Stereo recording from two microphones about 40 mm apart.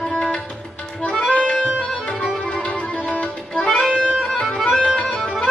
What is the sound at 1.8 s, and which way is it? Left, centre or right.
Music, left.